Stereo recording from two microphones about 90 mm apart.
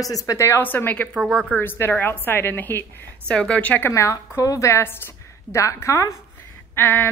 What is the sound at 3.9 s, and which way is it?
A woman's voice, 35° left (ahead or behind).